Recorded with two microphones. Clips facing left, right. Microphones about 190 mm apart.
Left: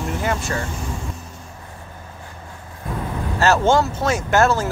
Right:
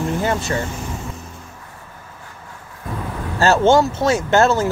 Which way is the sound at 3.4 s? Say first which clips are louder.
Right 3 dB; 30° right (ahead or behind).